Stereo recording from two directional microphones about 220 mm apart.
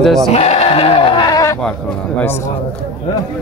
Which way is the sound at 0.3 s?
30° left (ahead or behind).